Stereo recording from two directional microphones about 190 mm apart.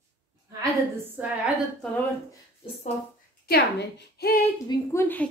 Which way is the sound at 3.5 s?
60° left (ahead or behind).